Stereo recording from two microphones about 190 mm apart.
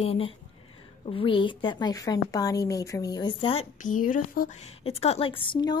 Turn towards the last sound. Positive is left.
turn(degrees=25)  # may be behind; listen again after turning